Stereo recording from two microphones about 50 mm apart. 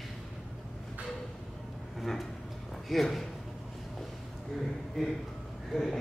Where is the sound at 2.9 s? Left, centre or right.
Centre.